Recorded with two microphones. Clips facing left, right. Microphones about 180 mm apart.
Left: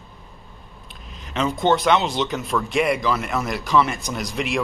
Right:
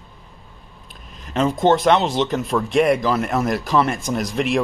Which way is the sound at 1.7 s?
Centre (ahead or behind).